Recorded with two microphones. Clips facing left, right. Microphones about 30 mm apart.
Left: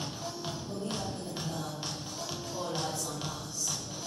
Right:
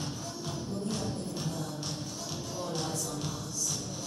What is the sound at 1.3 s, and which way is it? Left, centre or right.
Music, left.